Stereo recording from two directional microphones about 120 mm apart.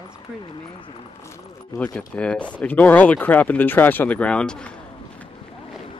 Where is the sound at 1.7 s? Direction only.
30° left (ahead or behind).